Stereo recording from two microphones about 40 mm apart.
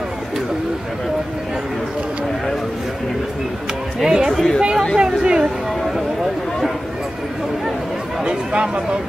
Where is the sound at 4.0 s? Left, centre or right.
Centre.